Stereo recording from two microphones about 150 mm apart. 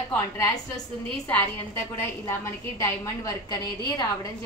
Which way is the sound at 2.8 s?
20° left (ahead or behind).